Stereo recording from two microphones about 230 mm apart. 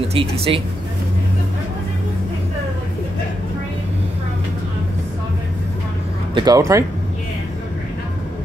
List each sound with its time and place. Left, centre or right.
0.1 s speech: right
6.3 s speech: centre